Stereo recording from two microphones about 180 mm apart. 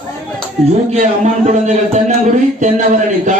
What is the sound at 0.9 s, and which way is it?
A man's voice, 40° right (ahead or behind).